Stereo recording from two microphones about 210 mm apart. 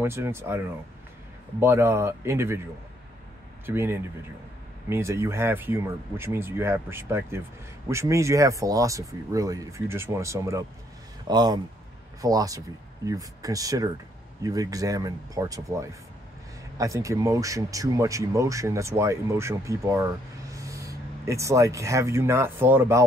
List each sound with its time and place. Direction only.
0.0 s speech: 10° right (ahead or behind)
1.6 s speech: 10° right (ahead or behind)
3.6 s speech: 10° right (ahead or behind)